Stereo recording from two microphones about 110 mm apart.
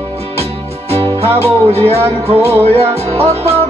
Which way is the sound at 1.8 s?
65° right (ahead or behind).